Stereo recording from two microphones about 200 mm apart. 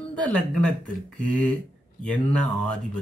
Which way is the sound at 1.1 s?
5° left (ahead or behind).